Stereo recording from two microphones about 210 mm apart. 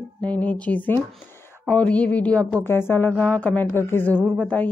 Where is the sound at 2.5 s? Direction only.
10° left (ahead or behind).